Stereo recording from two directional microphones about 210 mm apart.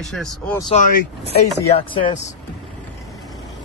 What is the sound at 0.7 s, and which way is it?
Speech, 30° left (ahead or behind).